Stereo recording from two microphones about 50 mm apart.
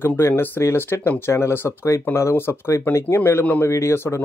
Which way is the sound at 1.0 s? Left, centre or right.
Left.